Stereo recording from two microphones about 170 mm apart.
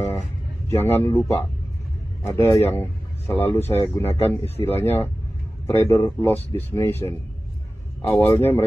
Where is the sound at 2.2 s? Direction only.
15° left (ahead or behind).